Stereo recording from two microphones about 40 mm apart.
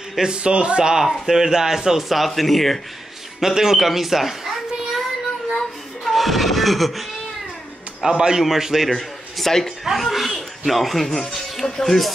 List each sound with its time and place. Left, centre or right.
0.2 s speech: right
1.2 s speech: centre
3.3 s speech: centre
5.6 s a sound: centre
8.0 s speech: centre
8.9 s a man's voice: centre